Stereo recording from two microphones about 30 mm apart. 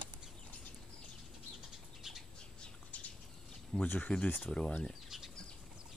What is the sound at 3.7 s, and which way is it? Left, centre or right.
Speech, centre.